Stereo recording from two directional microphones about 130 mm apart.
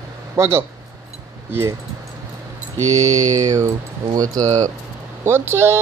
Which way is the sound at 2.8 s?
25° right (ahead or behind).